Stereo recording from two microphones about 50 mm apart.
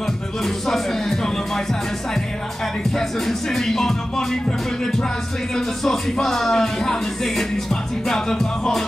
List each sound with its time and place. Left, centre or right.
0.7 s music: centre
3.0 s speech: centre
5.6 s speech: centre